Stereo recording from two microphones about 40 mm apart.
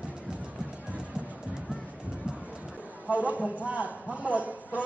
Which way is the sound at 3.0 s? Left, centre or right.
Right.